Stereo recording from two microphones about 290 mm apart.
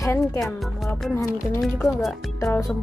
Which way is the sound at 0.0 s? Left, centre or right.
Centre.